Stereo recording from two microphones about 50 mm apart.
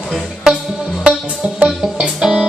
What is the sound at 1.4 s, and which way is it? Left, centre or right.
Music, centre.